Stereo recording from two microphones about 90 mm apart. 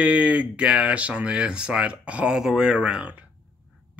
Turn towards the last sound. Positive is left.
turn(degrees=-15)  # may be behind; listen again after turning